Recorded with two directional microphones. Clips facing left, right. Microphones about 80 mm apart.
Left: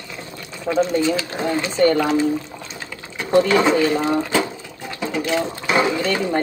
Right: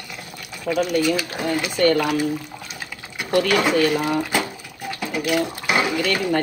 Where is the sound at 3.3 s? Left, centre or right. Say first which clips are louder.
Left 4 dB; left.